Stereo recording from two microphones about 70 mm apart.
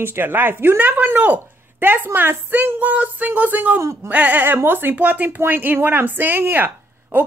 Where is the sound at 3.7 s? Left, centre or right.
Right.